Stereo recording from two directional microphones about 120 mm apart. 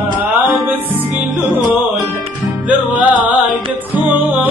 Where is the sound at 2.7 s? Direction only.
10° right (ahead or behind).